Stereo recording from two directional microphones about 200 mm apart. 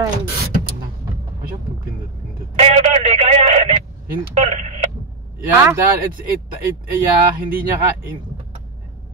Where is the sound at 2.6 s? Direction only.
35° right (ahead or behind).